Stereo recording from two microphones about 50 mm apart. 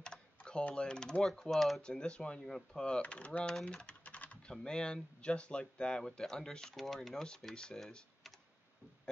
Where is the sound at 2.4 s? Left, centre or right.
Centre.